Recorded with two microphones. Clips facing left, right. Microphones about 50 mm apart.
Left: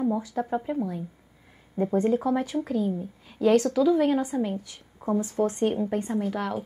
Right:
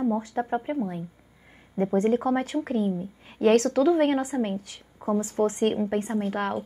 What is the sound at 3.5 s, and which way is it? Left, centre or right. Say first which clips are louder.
A woman's voice: even; right.